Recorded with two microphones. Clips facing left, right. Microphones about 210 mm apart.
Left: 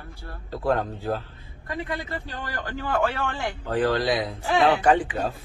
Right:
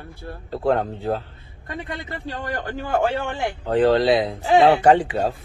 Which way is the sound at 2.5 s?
25° right (ahead or behind).